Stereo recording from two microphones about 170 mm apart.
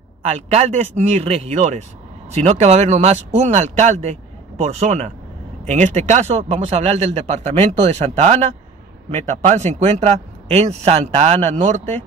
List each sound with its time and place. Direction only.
0.2 s speech: 40° right (ahead or behind)